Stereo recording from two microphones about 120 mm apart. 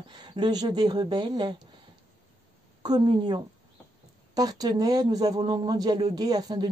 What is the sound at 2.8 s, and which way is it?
Speech, 35° right (ahead or behind).